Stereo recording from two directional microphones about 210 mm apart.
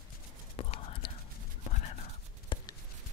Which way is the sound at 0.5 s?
25° left (ahead or behind).